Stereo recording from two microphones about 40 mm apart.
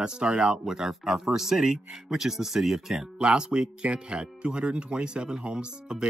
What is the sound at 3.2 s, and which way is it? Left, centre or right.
Speech, right.